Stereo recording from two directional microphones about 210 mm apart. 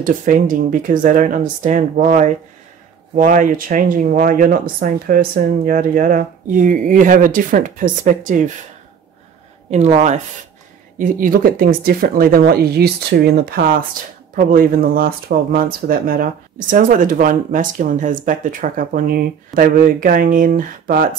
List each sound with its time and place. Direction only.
0.0 s speech: 40° right (ahead or behind)
9.7 s speech: 35° right (ahead or behind)